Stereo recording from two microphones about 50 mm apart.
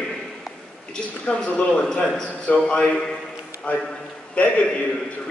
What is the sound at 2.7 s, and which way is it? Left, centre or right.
A man's voice, left.